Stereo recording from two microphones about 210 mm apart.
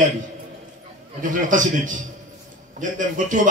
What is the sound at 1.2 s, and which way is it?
A man's voice, 35° right (ahead or behind).